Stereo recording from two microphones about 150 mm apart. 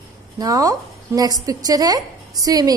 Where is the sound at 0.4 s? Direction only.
25° right (ahead or behind).